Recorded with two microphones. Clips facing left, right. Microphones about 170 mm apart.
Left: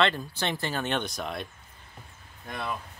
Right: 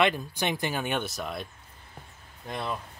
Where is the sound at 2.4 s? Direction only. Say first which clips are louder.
Right 1 dB; 25° right (ahead or behind).